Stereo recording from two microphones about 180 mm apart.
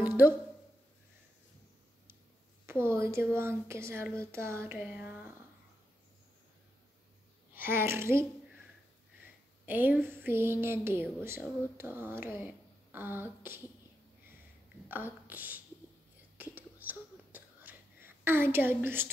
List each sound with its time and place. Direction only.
0.0 s a sound: 10° right (ahead or behind)
2.6 s a sound: 15° right (ahead or behind)
3.3 s speech: 15° right (ahead or behind)
7.5 s speech: 10° right (ahead or behind)
9.7 s a woman's voice: 10° right (ahead or behind)
14.9 s speech: 10° right (ahead or behind)
16.5 s whispering: 10° right (ahead or behind)